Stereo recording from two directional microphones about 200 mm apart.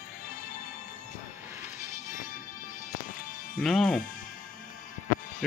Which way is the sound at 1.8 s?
40° left (ahead or behind).